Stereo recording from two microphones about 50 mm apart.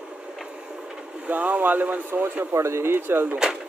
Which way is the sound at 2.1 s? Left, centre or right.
Right.